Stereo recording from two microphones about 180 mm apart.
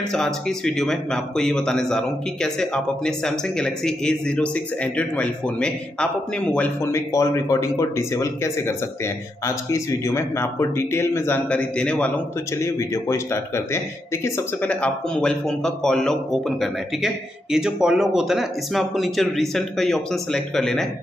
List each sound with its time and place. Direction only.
0.1 s speech: 5° left (ahead or behind)